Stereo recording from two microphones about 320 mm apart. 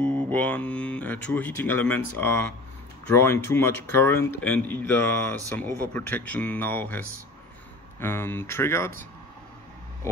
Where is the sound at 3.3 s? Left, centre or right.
Centre.